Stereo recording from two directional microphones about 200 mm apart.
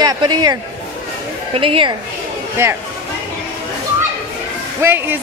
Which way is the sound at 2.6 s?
10° right (ahead or behind).